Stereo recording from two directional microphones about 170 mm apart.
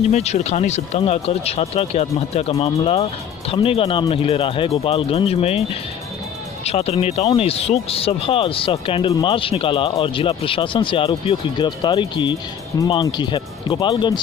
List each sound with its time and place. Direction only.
0.1 s speech: 40° left (ahead or behind)